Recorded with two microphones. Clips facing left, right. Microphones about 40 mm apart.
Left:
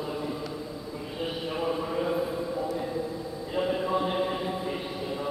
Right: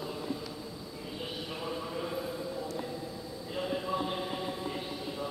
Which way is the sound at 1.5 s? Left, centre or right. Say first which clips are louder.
Left 9 dB; left.